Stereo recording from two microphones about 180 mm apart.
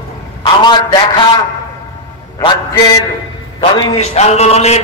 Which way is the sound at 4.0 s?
35° left (ahead or behind).